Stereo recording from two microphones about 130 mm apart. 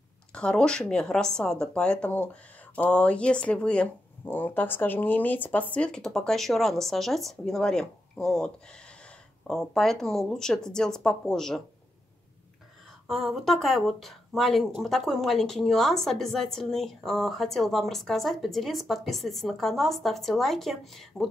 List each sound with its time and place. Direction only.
0.3 s speech: 5° left (ahead or behind)
9.5 s a woman's voice: centre (ahead or behind)
13.0 s a woman's voice: centre (ahead or behind)